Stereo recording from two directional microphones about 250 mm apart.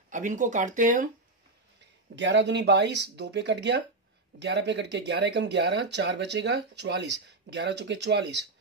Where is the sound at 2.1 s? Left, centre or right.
Right.